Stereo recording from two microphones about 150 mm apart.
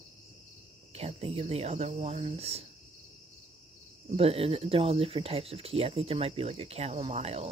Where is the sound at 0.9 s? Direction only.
45° right (ahead or behind).